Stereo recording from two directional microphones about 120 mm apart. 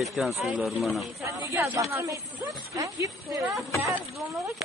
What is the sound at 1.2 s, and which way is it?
Speech, 25° right (ahead or behind).